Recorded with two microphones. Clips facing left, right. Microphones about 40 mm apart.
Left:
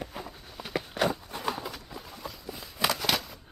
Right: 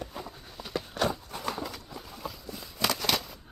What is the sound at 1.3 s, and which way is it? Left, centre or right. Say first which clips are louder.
Horse: left 2 dB; centre.